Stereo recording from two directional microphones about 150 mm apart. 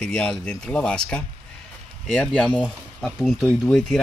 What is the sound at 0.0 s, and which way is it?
Speech, 5° left (ahead or behind).